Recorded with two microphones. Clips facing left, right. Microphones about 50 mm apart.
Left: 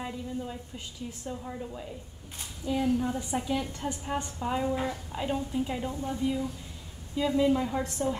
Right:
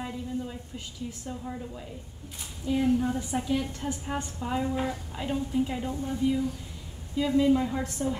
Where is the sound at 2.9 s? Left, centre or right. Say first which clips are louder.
Right 2 dB; centre.